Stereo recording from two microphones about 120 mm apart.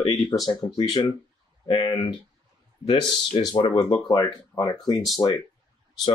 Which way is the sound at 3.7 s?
35° left (ahead or behind).